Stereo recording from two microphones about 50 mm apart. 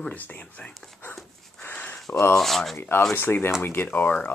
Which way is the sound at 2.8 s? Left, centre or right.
Left.